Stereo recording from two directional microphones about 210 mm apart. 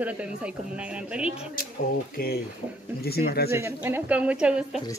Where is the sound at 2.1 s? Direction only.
45° left (ahead or behind).